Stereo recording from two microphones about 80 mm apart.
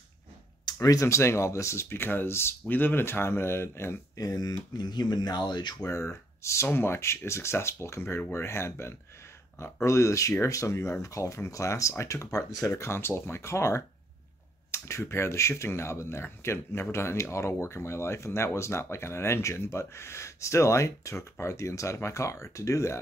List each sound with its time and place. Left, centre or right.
0.7 s speech: left
4.2 s speech: left
5.9 s speech: left